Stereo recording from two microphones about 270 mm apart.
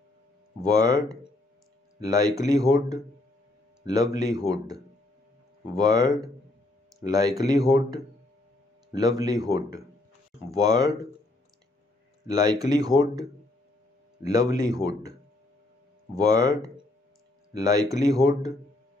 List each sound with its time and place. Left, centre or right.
0.6 s speech: centre
5.8 s speech: centre
12.3 s speech: centre
16.3 s speech: centre